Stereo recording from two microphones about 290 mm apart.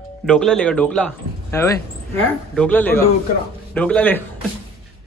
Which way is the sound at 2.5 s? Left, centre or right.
Centre.